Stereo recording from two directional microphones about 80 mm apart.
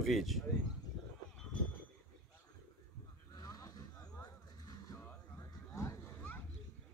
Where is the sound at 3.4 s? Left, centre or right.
Left.